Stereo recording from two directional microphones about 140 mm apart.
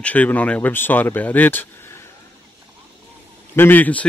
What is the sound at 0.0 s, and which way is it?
Speech, 10° left (ahead or behind).